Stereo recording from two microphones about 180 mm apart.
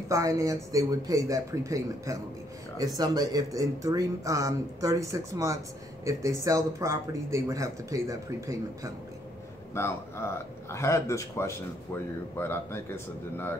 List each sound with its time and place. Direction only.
0.1 s speech: 20° right (ahead or behind)
9.8 s speech: 15° left (ahead or behind)